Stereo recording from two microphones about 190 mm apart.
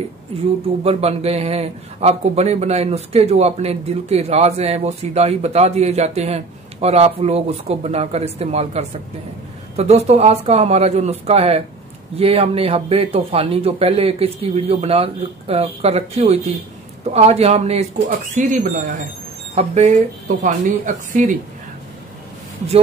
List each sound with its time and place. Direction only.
0.8 s speech: 30° right (ahead or behind)